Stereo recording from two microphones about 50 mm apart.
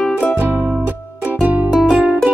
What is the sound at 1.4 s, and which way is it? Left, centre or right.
Music, right.